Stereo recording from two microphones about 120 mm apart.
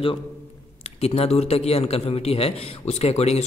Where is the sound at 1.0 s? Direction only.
60° left (ahead or behind).